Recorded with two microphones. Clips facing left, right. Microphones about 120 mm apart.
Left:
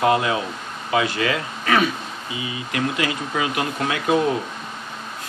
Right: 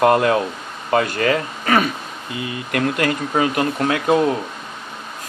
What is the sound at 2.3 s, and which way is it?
Speech, 55° right (ahead or behind).